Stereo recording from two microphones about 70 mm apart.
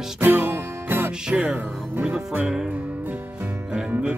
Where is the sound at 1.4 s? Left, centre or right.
Right.